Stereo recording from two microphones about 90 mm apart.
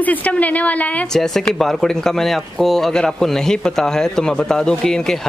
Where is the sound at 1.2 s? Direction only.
5° left (ahead or behind).